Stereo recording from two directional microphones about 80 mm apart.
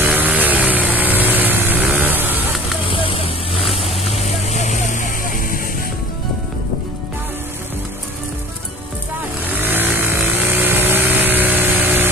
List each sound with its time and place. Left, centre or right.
0.0 s vehicle: right
2.8 s vehicle: left
3.6 s vehicle: centre
9.5 s vehicle: right